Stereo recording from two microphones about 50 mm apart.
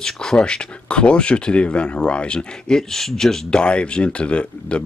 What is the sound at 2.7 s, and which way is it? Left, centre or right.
Speech, centre.